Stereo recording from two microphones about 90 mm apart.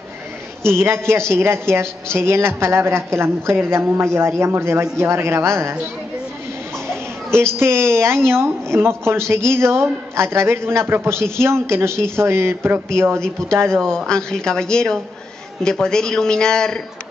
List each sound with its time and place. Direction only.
0.7 s a woman's voice: 25° right (ahead or behind)
7.5 s a woman's voice: 30° right (ahead or behind)
13.2 s a man's voice: 10° left (ahead or behind)